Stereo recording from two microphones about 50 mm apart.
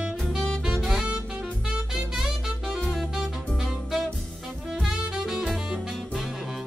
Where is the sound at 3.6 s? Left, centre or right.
Centre.